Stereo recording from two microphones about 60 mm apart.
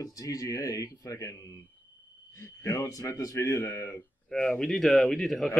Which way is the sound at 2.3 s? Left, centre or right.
Left.